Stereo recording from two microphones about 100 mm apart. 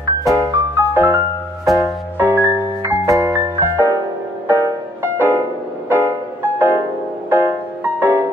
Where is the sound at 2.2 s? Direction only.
20° right (ahead or behind).